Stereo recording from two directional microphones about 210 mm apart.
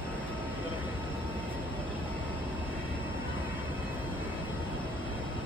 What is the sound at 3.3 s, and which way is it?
Train, 25° left (ahead or behind).